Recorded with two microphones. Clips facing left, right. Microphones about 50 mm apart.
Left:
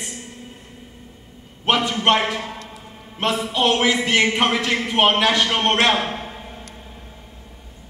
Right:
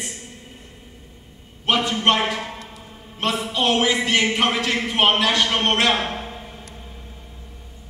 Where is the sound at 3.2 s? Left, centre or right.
Left.